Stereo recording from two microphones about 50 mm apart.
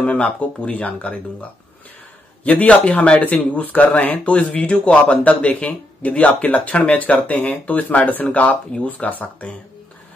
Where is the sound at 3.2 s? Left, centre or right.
Left.